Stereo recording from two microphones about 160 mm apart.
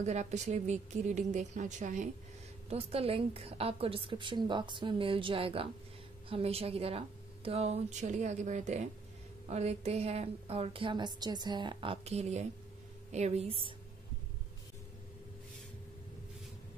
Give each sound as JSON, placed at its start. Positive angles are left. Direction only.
{"t": 0.0, "sound": "a woman's voice", "side_deg": -45}
{"t": 2.7, "sound": "a woman's voice", "side_deg": -35}